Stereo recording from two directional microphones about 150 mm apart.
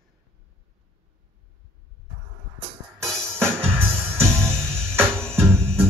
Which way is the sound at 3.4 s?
5° left (ahead or behind).